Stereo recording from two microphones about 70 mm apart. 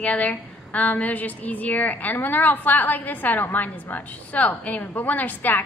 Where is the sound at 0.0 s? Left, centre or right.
Left.